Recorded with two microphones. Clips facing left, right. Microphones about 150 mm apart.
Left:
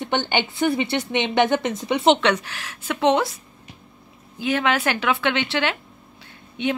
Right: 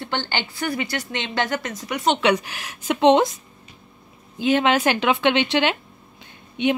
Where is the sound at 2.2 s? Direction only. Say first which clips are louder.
Right 2 dB; 10° right (ahead or behind).